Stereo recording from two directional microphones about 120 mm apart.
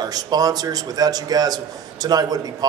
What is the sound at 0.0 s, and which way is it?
A man's voice, 35° right (ahead or behind).